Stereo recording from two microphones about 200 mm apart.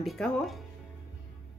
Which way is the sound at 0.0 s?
Centre (ahead or behind).